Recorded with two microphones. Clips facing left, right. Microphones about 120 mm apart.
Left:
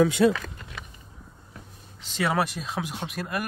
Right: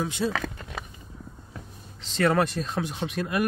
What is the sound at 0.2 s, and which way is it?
Speech, 90° left.